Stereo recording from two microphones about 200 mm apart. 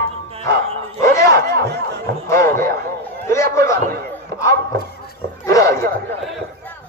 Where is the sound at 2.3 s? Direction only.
15° left (ahead or behind).